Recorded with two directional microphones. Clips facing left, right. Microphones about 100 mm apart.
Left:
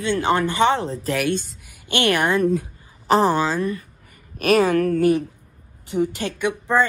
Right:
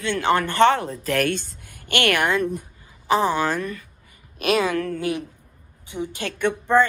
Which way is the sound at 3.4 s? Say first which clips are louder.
Left 2 dB; 15° left (ahead or behind).